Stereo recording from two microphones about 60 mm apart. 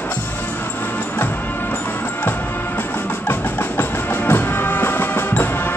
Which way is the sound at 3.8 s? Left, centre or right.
Left.